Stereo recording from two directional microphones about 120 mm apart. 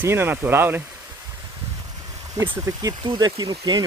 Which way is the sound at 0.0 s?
20° right (ahead or behind).